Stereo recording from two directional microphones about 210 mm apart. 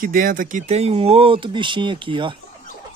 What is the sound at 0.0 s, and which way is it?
Speech, 40° right (ahead or behind).